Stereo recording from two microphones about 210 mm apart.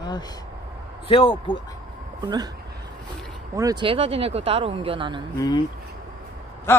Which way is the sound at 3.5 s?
20° right (ahead or behind).